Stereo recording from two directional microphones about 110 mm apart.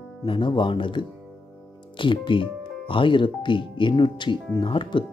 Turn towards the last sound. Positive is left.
turn(degrees=45)  # may be behind; listen again after turning